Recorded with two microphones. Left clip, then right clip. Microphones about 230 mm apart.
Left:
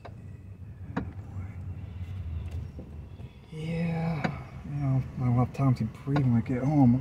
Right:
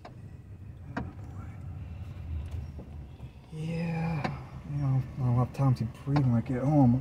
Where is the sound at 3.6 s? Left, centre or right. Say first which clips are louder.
Left 2 dB; left.